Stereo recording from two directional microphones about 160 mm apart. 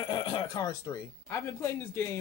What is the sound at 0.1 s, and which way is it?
Speech, 30° left (ahead or behind).